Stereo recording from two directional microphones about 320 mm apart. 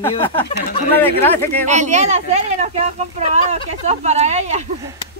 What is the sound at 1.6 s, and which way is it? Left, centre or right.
Speech, right.